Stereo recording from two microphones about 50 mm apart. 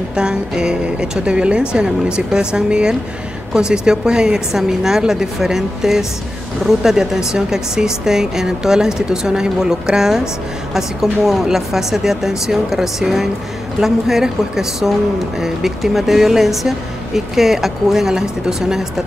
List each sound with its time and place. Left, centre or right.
0.1 s speech: centre